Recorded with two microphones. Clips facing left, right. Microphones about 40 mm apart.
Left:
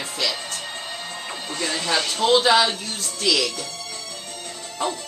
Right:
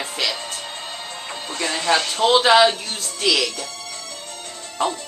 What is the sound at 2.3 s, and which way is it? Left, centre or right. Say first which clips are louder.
Speech: right 4 dB; right.